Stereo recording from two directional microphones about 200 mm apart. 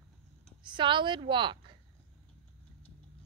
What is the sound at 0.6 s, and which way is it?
A woman's voice, 25° right (ahead or behind).